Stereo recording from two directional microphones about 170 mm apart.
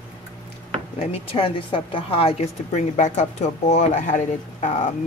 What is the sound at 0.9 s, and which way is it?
A woman's voice, 30° left (ahead or behind).